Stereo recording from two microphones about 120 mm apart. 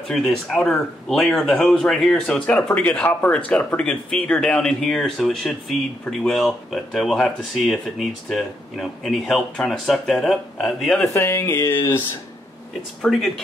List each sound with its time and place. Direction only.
0.1 s speech: centre (ahead or behind)
11.1 s speech: 20° left (ahead or behind)
13.0 s speech: 5° left (ahead or behind)